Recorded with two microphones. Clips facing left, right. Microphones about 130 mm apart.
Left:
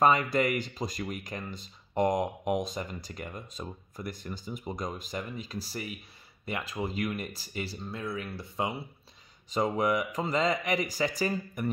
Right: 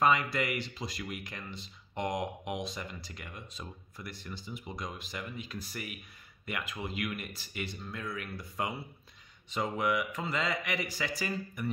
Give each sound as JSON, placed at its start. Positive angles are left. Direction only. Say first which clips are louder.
{"t": 0.0, "sound": "speech", "louder": "left 4 dB", "side_deg": 45}
{"t": 9.5, "sound": "speech", "louder": "left 4 dB", "side_deg": 40}